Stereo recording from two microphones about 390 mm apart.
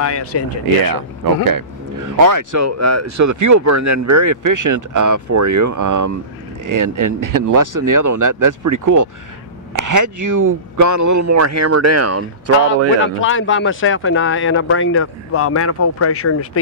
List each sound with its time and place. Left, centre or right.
0.0 s speech: left
1.5 s speech: right
13.2 s speech: left